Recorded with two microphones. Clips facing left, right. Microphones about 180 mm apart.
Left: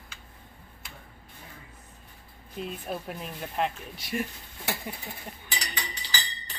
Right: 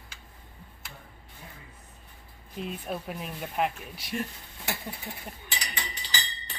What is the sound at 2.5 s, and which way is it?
Speech, centre (ahead or behind).